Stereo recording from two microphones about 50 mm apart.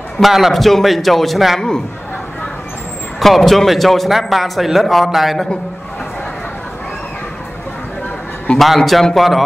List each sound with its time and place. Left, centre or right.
0.2 s a man's voice: centre
3.2 s a man's voice: centre
8.5 s a man's voice: centre